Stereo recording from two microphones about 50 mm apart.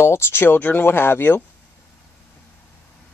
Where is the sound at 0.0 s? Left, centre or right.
Left.